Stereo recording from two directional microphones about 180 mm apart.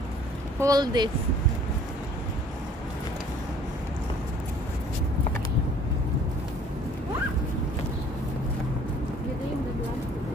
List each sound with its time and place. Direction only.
0.6 s speech: 20° right (ahead or behind)